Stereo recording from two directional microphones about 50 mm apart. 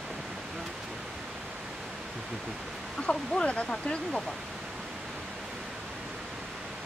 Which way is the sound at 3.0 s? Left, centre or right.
Centre.